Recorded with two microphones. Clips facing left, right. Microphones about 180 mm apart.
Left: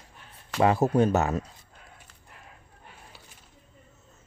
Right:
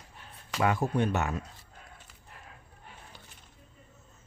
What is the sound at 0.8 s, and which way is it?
Speech, 40° left (ahead or behind).